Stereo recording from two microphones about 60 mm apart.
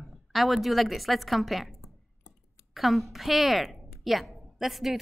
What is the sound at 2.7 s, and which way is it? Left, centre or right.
A woman's voice, centre.